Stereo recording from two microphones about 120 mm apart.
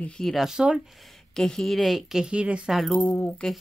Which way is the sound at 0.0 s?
5° left (ahead or behind).